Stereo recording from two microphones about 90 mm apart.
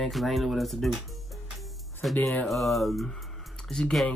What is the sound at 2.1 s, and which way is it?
Speech, 20° left (ahead or behind).